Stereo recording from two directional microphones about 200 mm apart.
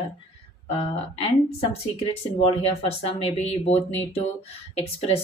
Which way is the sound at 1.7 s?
30° left (ahead or behind).